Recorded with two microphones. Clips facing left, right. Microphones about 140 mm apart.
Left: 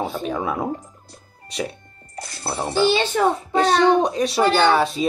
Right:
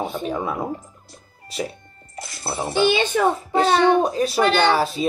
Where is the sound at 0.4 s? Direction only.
5° left (ahead or behind).